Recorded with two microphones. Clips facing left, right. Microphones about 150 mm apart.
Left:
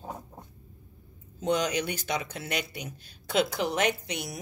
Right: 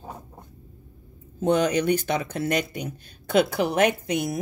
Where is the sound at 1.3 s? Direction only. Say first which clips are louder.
Right 6 dB; 55° right (ahead or behind).